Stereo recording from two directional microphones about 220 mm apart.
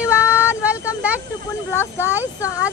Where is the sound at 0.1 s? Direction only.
5° right (ahead or behind).